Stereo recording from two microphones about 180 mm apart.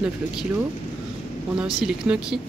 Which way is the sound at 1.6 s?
5° right (ahead or behind).